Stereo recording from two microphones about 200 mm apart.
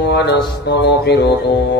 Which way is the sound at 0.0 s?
60° left (ahead or behind).